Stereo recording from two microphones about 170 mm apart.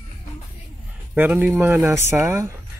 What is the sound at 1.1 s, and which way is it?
Speech, 10° right (ahead or behind).